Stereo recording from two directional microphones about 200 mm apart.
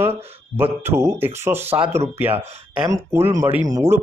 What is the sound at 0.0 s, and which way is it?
Speech, 10° right (ahead or behind).